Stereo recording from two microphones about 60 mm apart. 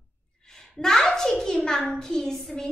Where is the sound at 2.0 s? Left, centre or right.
Centre.